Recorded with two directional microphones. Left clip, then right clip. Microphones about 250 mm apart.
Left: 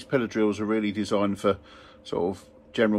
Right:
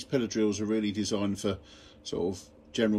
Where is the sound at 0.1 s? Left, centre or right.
Centre.